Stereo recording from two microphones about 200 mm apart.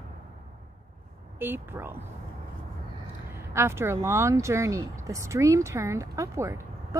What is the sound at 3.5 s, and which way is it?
Speech, 15° right (ahead or behind).